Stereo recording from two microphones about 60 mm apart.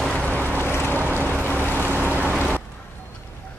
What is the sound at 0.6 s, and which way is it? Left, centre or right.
Vehicle, left.